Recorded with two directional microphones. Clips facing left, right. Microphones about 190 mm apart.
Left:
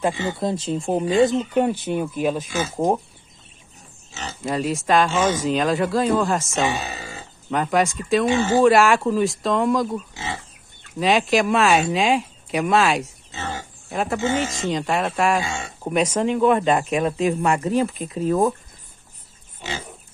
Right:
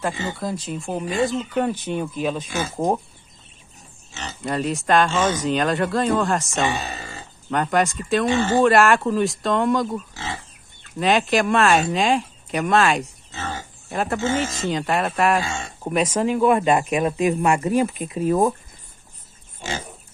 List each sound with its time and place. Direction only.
0.0 s speech: 25° left (ahead or behind)
1.5 s speech: 10° left (ahead or behind)
4.1 s speech: centre (ahead or behind)
8.3 s speech: 10° left (ahead or behind)
8.6 s speech: centre (ahead or behind)
19.6 s pig: 45° right (ahead or behind)